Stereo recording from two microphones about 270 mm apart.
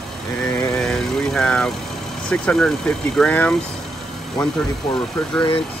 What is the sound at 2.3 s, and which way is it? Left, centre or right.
Speech, centre.